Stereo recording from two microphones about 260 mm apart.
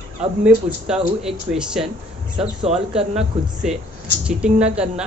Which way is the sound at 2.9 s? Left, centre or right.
Centre.